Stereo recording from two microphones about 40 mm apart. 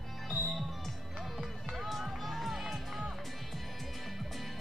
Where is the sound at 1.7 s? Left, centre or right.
Centre.